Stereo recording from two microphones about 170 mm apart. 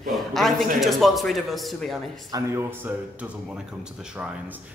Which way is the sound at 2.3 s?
15° right (ahead or behind).